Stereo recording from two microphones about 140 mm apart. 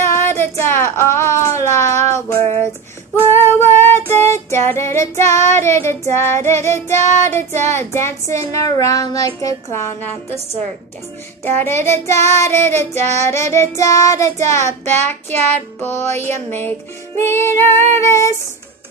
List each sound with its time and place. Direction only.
0.0 s child singing: 20° left (ahead or behind)
3.3 s female singing: 15° left (ahead or behind)
11.4 s female singing: 15° left (ahead or behind)
15.3 s music: 15° left (ahead or behind)
17.9 s female singing: 20° left (ahead or behind)